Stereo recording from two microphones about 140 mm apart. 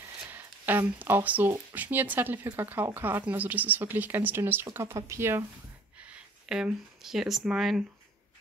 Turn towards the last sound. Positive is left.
turn(degrees=-5)  # may be behind; listen again after turning